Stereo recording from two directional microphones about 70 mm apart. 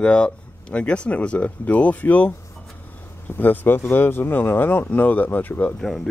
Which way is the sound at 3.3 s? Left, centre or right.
Left.